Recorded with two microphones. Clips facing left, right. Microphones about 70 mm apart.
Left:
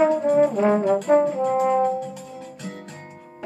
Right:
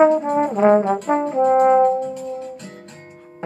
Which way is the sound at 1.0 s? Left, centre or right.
Right.